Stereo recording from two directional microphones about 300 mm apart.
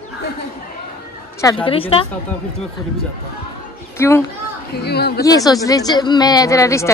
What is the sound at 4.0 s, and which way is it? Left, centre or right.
Speech, centre.